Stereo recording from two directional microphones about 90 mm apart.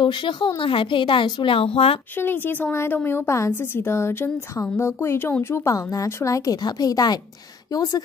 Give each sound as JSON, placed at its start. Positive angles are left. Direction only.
{"t": 0.0, "sound": "a woman's voice", "side_deg": 65}
{"t": 2.1, "sound": "a woman's voice", "side_deg": 20}